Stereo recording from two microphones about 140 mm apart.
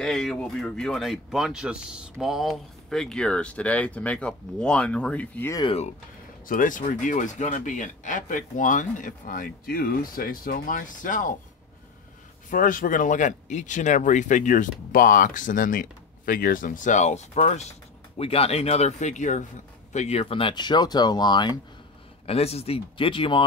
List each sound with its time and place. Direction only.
0.0 s speech: 5° left (ahead or behind)
5.7 s speech: 50° left (ahead or behind)
6.4 s speech: 75° left (ahead or behind)
12.4 s speech: 75° left (ahead or behind); by 21.5 s 30° left (ahead or behind)
22.2 s speech: 45° left (ahead or behind)